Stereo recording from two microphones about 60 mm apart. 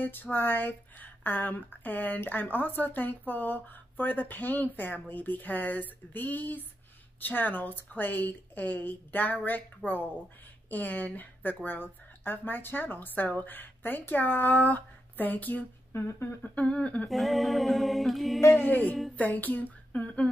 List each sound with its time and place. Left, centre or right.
0.0 s speech: left
15.9 s humming: left
16.4 s speech: left
17.1 s a sound: centre
18.4 s speech: left